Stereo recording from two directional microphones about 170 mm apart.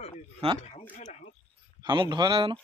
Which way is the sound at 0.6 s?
35° left (ahead or behind).